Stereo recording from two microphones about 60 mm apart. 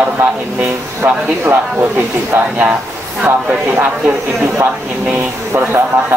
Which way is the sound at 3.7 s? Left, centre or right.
Right.